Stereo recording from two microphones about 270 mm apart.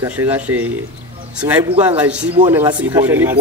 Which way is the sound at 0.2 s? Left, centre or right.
Centre.